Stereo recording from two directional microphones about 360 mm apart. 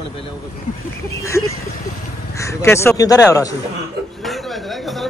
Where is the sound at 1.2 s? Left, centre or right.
Centre.